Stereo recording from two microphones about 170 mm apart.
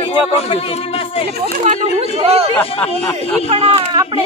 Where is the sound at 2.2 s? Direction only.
35° right (ahead or behind).